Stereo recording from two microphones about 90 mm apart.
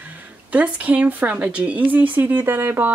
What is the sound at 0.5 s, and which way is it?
Speech, 15° right (ahead or behind).